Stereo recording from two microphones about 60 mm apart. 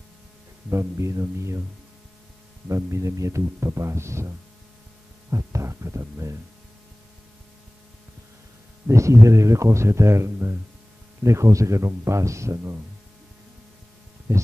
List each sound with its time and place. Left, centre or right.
0.7 s speech: right
2.7 s speech: right
5.3 s speech: right
8.8 s speech: right
14.3 s speech: right